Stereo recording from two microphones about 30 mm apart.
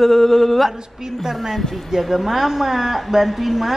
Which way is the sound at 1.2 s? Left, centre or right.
Centre.